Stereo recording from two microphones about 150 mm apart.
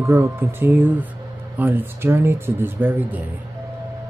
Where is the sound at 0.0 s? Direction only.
20° right (ahead or behind).